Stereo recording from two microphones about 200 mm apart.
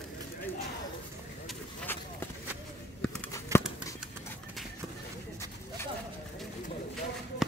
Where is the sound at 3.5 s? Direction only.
15° right (ahead or behind).